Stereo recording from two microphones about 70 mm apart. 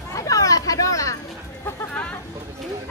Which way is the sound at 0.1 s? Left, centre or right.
Left.